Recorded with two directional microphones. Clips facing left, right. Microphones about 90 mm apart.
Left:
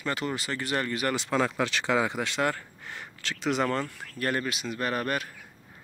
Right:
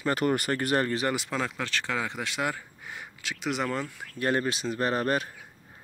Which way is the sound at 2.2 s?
5° right (ahead or behind).